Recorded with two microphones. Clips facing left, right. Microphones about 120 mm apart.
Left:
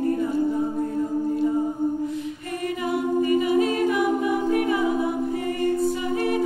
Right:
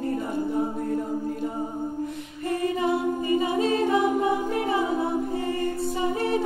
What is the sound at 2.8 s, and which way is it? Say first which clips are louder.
A capella: left 1 dB; 25° right (ahead or behind).